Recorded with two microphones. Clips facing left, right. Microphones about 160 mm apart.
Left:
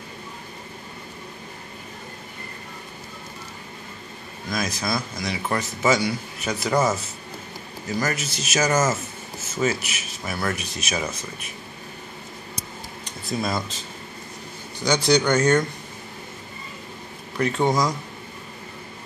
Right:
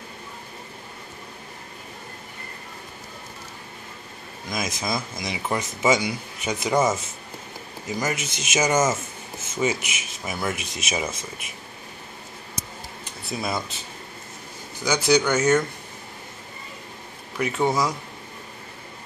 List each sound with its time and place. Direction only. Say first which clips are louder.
4.5 s speech: left 1 dB; 20° right (ahead or behind)
13.3 s speech: left 2 dB; 10° right (ahead or behind)
14.8 s speech: left 1 dB; 5° right (ahead or behind)
17.4 s speech: left 1 dB; 5° right (ahead or behind)